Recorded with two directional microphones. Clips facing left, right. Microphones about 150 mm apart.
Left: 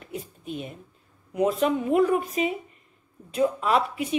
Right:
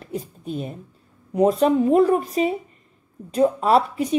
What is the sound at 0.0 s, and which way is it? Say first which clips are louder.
A woman's voice: right 6 dB; 35° right (ahead or behind).